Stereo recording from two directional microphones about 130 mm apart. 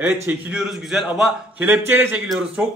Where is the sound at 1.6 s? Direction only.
15° right (ahead or behind).